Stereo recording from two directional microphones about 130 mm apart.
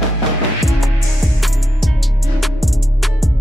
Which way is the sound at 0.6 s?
Centre (ahead or behind).